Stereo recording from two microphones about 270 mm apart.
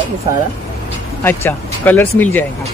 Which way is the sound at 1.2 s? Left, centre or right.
Centre.